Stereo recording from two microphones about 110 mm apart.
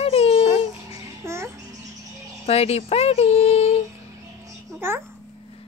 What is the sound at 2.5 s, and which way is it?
Speech, 70° left (ahead or behind).